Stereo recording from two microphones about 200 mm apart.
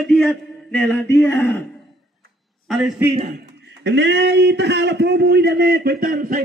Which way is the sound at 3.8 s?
60° right (ahead or behind).